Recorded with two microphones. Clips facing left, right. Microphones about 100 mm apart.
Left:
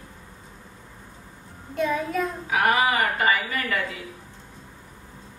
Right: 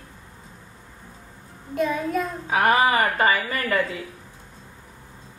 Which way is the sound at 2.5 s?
30° right (ahead or behind).